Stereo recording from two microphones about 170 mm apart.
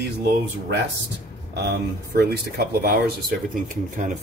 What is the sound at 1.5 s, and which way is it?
Speech, 75° right (ahead or behind).